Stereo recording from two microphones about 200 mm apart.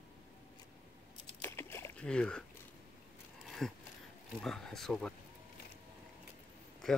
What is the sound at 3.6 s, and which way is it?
Speech, centre (ahead or behind).